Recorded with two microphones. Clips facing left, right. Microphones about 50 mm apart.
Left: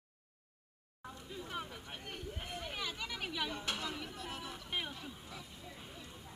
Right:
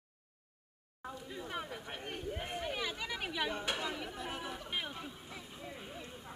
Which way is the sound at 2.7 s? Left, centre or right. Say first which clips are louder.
Right 3 dB; centre.